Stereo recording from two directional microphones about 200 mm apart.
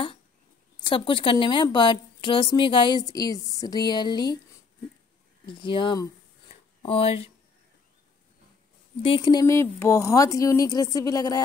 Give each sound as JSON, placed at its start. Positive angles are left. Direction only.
{"t": 0.8, "sound": "a woman's voice", "side_deg": 25}
{"t": 5.5, "sound": "a woman's voice", "side_deg": 25}
{"t": 6.5, "sound": "a sound", "side_deg": 30}
{"t": 9.0, "sound": "speech", "side_deg": 25}